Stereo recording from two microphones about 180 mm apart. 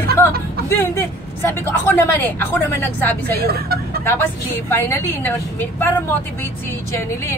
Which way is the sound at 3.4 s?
60° right (ahead or behind).